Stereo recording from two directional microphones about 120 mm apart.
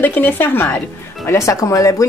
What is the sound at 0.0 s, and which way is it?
A woman's voice, 15° left (ahead or behind).